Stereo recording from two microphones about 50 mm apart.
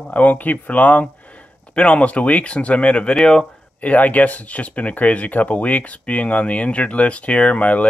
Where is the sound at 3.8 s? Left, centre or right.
Left.